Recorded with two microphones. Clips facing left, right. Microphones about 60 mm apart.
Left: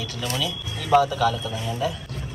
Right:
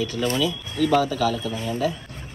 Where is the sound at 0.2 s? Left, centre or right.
Right.